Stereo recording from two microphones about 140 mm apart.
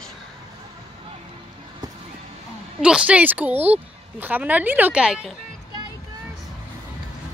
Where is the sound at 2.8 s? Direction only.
5° right (ahead or behind).